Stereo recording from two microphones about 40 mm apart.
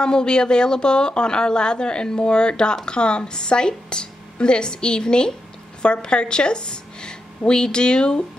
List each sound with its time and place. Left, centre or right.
0.0 s a woman's voice: left